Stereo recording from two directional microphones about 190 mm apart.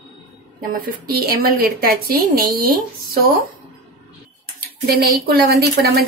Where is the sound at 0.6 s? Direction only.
50° right (ahead or behind).